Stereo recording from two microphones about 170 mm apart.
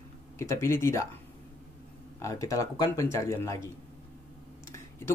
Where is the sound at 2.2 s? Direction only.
20° left (ahead or behind).